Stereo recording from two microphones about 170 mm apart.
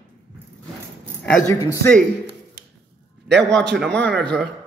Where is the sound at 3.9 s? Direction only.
5° left (ahead or behind).